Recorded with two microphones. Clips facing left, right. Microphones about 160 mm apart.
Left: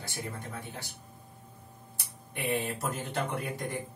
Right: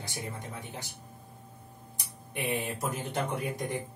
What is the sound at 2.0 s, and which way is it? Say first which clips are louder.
Speech: right 2 dB; 15° right (ahead or behind).